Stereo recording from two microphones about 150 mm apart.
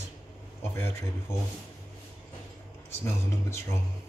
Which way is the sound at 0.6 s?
15° left (ahead or behind).